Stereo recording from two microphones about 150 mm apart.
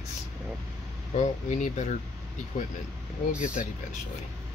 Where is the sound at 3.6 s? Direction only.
55° left (ahead or behind).